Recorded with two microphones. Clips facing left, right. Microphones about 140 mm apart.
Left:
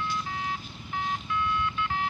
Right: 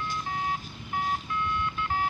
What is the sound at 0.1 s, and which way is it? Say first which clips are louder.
Vehicle: right 1 dB; 45° right (ahead or behind).